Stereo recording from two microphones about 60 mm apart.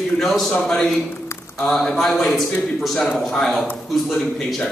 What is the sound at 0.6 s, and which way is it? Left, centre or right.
A man's voice, centre.